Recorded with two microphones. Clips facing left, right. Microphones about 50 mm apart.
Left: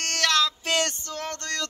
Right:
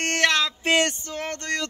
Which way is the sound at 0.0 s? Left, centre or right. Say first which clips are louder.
Right 2 dB; right.